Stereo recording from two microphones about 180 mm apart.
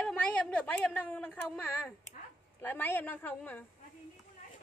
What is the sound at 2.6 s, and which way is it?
A woman's voice, 10° left (ahead or behind).